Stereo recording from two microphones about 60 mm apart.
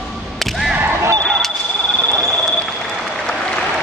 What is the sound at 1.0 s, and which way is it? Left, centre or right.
Basketball bounce, right.